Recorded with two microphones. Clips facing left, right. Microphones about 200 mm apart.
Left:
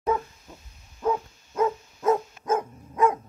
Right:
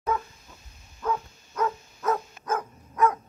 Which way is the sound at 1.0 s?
25° left (ahead or behind).